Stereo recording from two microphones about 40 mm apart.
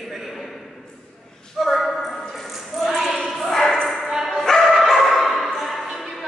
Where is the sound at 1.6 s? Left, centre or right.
Centre.